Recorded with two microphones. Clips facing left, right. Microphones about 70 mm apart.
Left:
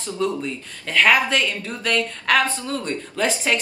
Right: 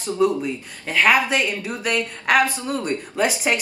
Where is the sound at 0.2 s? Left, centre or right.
Centre.